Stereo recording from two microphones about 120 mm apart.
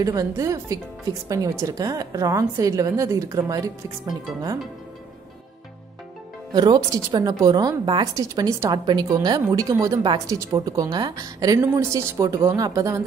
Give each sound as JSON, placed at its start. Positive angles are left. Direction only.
{"t": 0.0, "sound": "a woman's voice", "side_deg": -30}
{"t": 6.5, "sound": "a woman's voice", "side_deg": -35}